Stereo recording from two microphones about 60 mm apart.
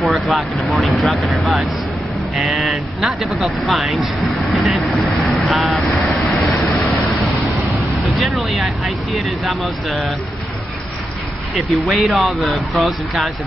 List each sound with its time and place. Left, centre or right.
0.0 s speech: centre
8.2 s speech: centre
11.5 s speech: centre